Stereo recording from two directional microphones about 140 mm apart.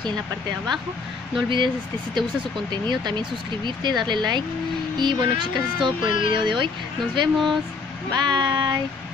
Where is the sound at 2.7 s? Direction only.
30° right (ahead or behind).